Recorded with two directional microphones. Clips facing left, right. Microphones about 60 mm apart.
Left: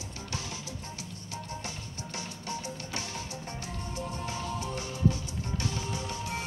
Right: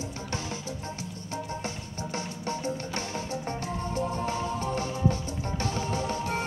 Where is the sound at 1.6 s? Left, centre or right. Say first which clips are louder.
Right 6 dB; right.